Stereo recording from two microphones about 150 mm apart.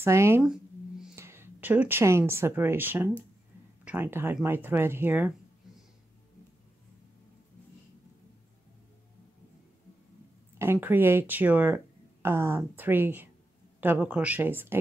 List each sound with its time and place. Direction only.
0.0 s speech: 15° right (ahead or behind)
0.4 s tuning fork: 5° right (ahead or behind)
1.1 s speech: 15° right (ahead or behind)
10.6 s speech: 15° right (ahead or behind)